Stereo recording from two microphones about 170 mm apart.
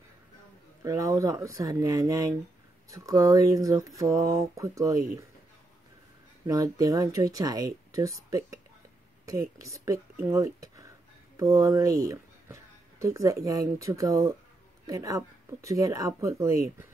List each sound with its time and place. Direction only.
0.8 s speech: 20° right (ahead or behind)
6.4 s speech: 20° right (ahead or behind)